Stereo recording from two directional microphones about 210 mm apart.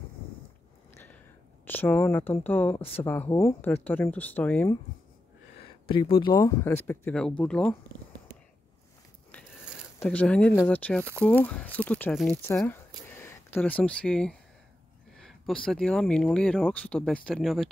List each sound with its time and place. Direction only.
0.9 s a sound: 10° left (ahead or behind)
1.7 s speech: 10° left (ahead or behind)
5.9 s speech: 25° left (ahead or behind); by 7.7 s 5° left (ahead or behind)
9.9 s speech: 5° left (ahead or behind)